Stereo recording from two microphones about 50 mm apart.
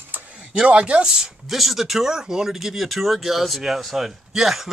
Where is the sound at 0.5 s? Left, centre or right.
Centre.